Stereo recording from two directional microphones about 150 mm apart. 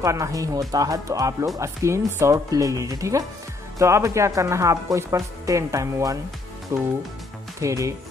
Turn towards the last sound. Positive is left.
turn(degrees=-20)  # may be behind; listen again after turning